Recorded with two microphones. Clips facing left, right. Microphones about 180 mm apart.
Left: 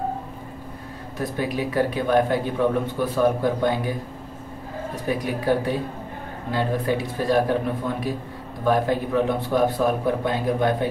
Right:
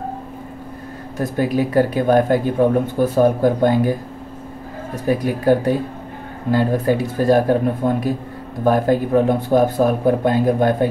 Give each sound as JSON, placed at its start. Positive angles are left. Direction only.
{"t": 1.1, "sound": "speech", "side_deg": -45}
{"t": 5.0, "sound": "speech", "side_deg": -45}